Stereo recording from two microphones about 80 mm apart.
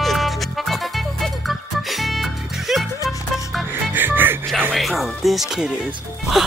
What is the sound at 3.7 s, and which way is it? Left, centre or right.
Music, right.